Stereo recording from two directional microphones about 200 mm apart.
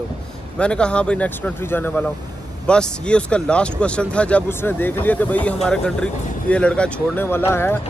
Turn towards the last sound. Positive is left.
turn(degrees=10)  # may be behind; listen again after turning